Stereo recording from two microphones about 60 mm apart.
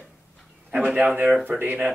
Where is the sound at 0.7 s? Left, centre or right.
Right.